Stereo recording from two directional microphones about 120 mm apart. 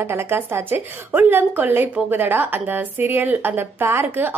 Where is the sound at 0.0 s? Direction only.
20° right (ahead or behind).